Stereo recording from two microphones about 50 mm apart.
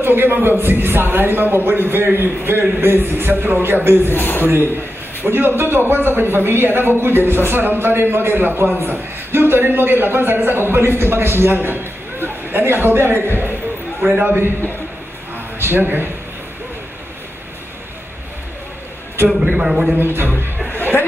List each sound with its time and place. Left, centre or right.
0.0 s a man's voice: right
4.1 s a man's voice: left
5.2 s a man's voice: right
15.6 s a man's voice: right
19.2 s a man's voice: right
20.0 s a man's voice: right
20.7 s music: left